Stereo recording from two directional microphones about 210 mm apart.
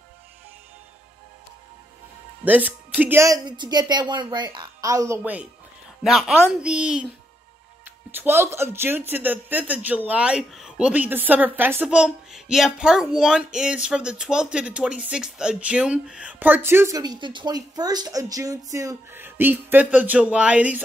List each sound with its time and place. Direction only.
2.4 s speech: 10° right (ahead or behind)
8.1 s speech: 10° right (ahead or behind)